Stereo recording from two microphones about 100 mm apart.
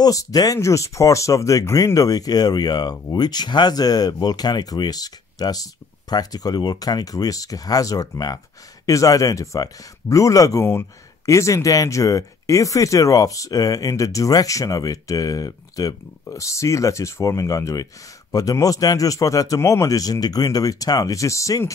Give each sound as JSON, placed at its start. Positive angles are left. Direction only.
{"t": 0.0, "sound": "speech", "side_deg": 35}
{"t": 10.6, "sound": "speech", "side_deg": 25}